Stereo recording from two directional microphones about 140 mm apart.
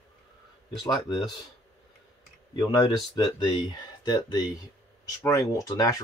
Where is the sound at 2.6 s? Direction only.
30° left (ahead or behind).